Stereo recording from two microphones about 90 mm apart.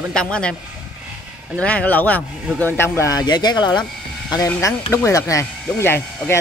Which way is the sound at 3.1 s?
50° left (ahead or behind).